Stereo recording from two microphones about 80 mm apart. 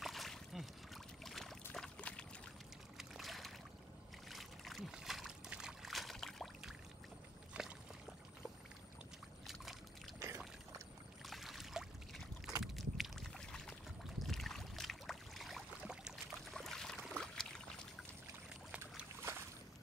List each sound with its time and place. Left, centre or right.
0.0 s rowboat: centre
1.2 s boat: centre
1.7 s a sound: centre
3.0 s boat: centre
5.5 s a sound: centre
7.5 s rowboat: centre
10.1 s boat: right
11.2 s boat: centre
12.7 s rowboat: centre
14.2 s boat: centre
15.8 s boat: centre
16.5 s a sound: centre
17.1 s pour: centre